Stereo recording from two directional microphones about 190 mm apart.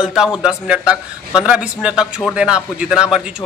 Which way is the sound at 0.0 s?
5° right (ahead or behind).